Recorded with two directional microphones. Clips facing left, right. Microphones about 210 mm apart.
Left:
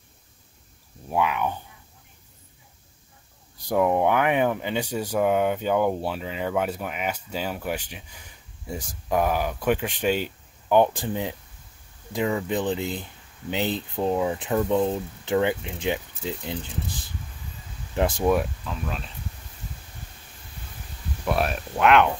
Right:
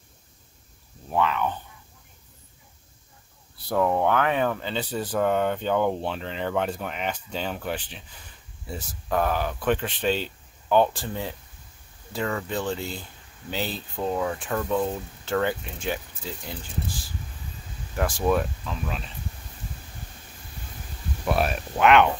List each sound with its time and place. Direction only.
1.1 s speech: 10° left (ahead or behind)
3.5 s speech: 15° left (ahead or behind)
18.7 s speech: centre (ahead or behind)
21.3 s speech: centre (ahead or behind)